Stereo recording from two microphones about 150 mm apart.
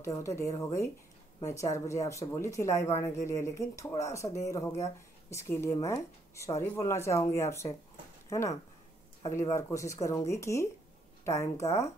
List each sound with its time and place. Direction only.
0.0 s speech: 20° left (ahead or behind)